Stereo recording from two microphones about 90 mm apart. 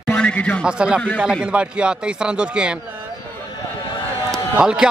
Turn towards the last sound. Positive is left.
turn(degrees=-10)  # may be behind; listen again after turning